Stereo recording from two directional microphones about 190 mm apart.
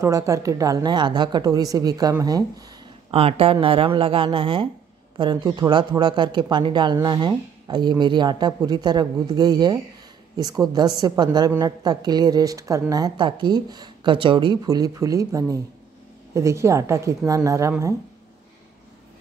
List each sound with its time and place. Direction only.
0.0 s a woman's voice: 15° right (ahead or behind)
3.1 s a man's voice: 30° right (ahead or behind); by 17.9 s 15° right (ahead or behind)